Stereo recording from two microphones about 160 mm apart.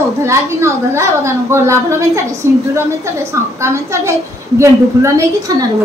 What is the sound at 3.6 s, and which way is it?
A woman's voice, 15° right (ahead or behind).